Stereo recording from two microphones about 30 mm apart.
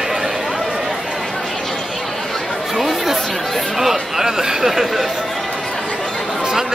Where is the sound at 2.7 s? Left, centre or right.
Centre.